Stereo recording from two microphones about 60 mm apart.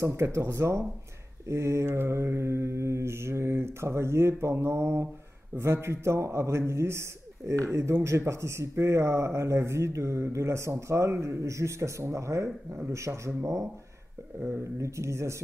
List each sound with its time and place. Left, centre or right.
0.0 s a man's voice: right
14.6 s speech: right